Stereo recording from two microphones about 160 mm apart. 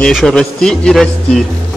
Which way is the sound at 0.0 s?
5° left (ahead or behind).